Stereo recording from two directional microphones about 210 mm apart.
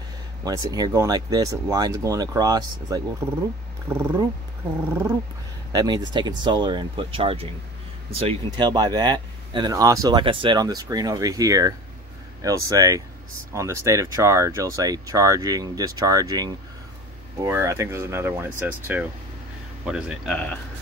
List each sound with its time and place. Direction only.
0.4 s speech: 15° right (ahead or behind)
5.7 s speech: 20° right (ahead or behind); by 20.5 s 5° left (ahead or behind)